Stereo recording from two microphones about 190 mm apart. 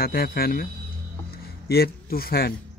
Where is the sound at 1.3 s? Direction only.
55° left (ahead or behind).